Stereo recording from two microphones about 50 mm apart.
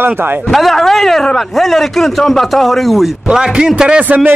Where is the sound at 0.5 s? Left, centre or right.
Centre.